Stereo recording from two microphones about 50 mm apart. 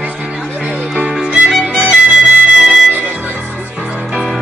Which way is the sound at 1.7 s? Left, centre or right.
Right.